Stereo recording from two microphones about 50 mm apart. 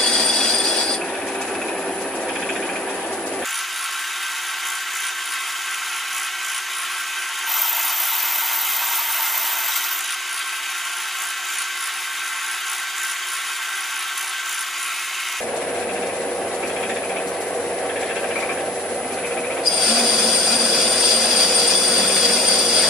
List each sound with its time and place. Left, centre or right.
0.0 s train: centre
19.6 s train: centre
20.8 s a sound: centre